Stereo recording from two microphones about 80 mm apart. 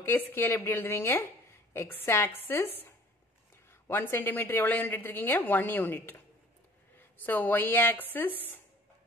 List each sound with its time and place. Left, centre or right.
0.0 s a woman's voice: left